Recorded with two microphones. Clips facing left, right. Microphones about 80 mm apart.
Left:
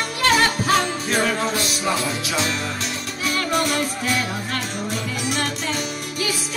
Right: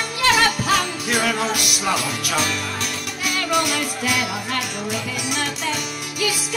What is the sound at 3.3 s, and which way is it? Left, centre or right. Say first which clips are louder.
Music: even; left.